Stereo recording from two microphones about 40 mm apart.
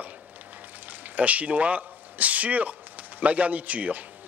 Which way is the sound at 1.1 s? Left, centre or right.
Right.